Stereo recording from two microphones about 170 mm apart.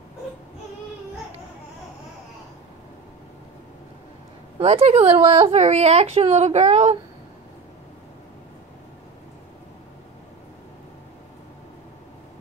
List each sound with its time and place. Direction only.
4.6 s speech: 40° right (ahead or behind)